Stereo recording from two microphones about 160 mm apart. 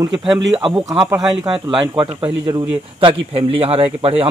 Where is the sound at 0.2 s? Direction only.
Centre (ahead or behind).